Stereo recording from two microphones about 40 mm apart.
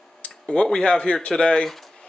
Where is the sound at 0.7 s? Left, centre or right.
Left.